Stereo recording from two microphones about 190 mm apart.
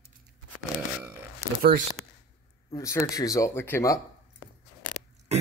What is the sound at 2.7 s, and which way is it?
Speech, 15° left (ahead or behind).